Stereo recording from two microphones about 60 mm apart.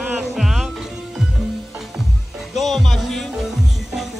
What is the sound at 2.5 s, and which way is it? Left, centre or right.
Music, centre.